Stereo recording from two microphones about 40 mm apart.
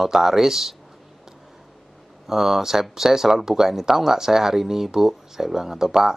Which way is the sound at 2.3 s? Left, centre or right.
Centre.